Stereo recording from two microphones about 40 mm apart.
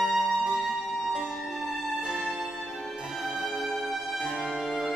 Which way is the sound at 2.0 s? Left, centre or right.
Right.